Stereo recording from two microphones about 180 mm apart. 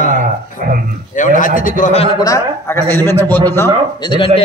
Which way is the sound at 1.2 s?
45° left (ahead or behind).